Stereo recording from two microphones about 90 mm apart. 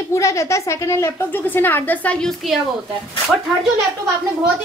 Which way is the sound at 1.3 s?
20° left (ahead or behind).